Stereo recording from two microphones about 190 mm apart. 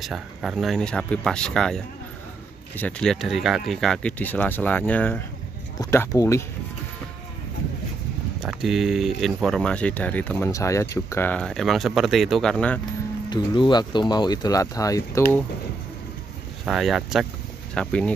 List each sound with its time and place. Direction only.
0.0 s speech: centre (ahead or behind); by 6.4 s 15° left (ahead or behind)
8.4 s speech: centre (ahead or behind)
13.3 s speech: 25° left (ahead or behind)
16.6 s speech: centre (ahead or behind)